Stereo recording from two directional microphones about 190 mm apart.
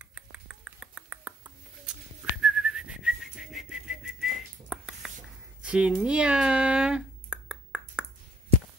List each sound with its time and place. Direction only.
0.0 s finger snapping: 5° right (ahead or behind)
2.4 s whistling: 5° right (ahead or behind)
5.6 s a sound: 5° right (ahead or behind)